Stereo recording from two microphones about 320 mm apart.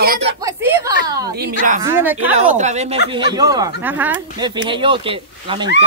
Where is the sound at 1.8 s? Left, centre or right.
Centre.